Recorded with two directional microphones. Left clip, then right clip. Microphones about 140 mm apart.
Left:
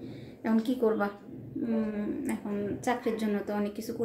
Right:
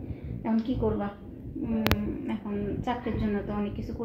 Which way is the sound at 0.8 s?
30° left (ahead or behind).